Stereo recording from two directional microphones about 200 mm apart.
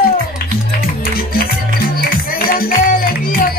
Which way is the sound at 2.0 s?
45° left (ahead or behind).